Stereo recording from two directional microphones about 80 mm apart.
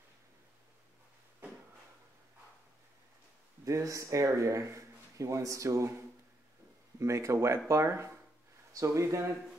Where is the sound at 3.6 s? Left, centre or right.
Right.